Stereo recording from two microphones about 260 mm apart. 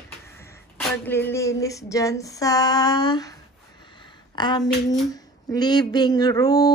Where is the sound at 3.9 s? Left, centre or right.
Centre.